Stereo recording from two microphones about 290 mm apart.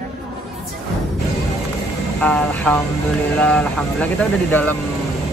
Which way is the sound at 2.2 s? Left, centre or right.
Centre.